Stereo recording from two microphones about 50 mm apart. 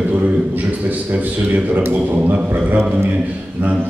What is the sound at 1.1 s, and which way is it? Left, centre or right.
A man's voice, right.